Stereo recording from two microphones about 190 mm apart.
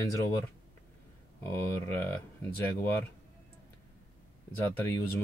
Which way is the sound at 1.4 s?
10° left (ahead or behind).